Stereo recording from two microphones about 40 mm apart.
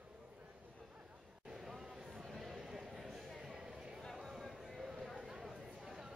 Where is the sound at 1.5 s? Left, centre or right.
Centre.